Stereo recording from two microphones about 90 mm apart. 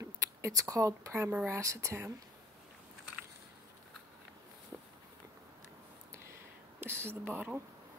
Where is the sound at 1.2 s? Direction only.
20° right (ahead or behind).